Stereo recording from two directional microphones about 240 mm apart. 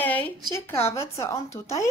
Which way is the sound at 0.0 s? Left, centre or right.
Centre.